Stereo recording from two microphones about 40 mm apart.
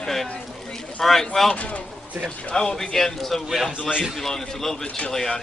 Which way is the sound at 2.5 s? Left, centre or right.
Centre.